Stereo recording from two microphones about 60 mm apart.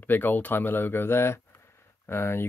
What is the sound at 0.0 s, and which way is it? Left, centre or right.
Speech, left.